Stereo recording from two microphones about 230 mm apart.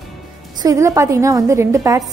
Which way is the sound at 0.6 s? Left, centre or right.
Centre.